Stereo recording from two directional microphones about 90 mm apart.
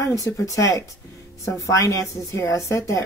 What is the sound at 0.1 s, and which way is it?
A woman's voice, 35° left (ahead or behind).